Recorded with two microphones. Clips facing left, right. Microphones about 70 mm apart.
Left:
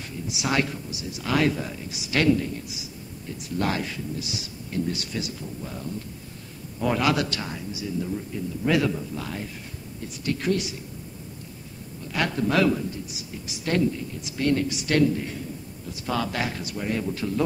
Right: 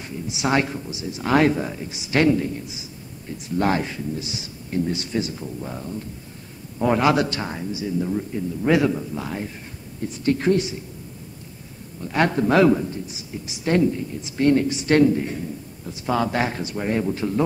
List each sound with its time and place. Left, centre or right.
0.0 s a man's voice: right
12.1 s a man's voice: right